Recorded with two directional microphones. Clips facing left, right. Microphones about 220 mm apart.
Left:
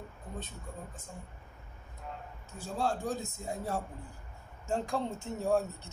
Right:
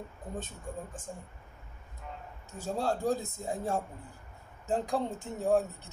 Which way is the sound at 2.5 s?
40° right (ahead or behind).